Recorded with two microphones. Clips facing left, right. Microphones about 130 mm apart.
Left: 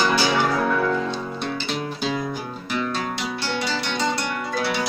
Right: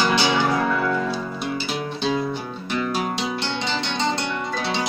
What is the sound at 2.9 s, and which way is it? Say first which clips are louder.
Music: right 2 dB; 15° right (ahead or behind).